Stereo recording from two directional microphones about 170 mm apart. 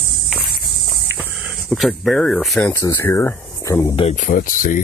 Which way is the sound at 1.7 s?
Centre (ahead or behind).